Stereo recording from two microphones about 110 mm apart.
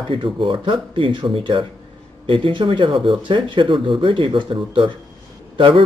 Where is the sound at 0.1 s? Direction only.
50° right (ahead or behind).